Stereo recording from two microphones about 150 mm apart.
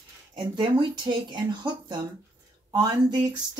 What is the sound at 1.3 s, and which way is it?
Speech, 30° right (ahead or behind).